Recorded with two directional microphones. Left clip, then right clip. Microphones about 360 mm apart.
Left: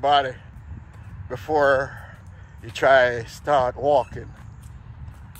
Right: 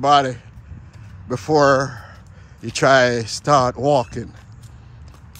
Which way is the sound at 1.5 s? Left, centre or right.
Centre.